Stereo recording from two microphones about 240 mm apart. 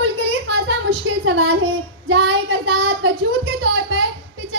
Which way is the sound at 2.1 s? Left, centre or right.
Right.